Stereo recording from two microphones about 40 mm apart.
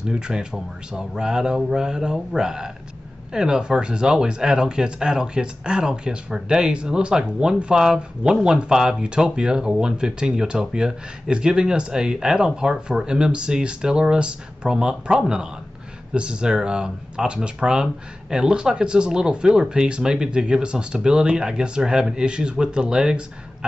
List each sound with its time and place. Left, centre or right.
0.1 s speech: centre